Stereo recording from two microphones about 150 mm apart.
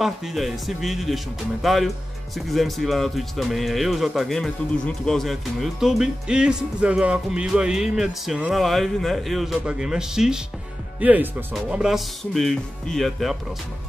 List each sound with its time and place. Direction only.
0.0 s speech: centre (ahead or behind)